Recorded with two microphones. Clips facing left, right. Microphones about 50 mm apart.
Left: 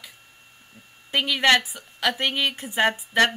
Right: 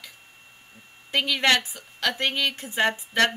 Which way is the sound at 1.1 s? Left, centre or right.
Centre.